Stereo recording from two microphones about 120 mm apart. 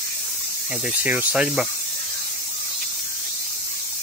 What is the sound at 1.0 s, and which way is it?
Speech, 10° right (ahead or behind).